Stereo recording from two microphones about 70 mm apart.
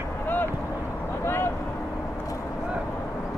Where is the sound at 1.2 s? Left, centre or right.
Left.